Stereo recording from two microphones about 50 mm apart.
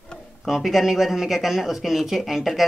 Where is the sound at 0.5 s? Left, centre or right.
Centre.